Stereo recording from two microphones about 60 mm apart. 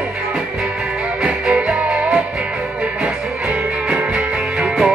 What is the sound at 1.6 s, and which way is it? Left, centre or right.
Music, centre.